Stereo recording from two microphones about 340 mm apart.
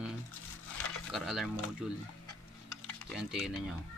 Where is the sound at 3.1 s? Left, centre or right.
Centre.